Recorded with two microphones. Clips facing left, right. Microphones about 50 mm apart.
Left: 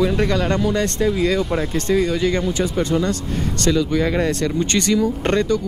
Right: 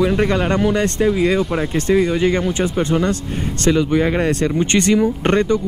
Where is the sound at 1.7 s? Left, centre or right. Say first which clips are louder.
Right 4 dB; right.